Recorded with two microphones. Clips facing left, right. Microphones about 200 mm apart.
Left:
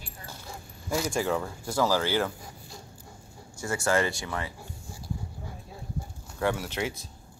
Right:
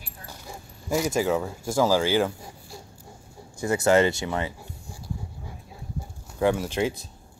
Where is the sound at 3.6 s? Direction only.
20° right (ahead or behind).